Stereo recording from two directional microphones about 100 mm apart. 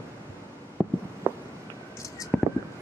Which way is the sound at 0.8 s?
Centre (ahead or behind).